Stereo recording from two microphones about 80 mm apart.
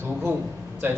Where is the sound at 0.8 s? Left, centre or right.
Right.